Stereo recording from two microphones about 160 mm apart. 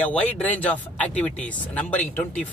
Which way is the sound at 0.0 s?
10° left (ahead or behind).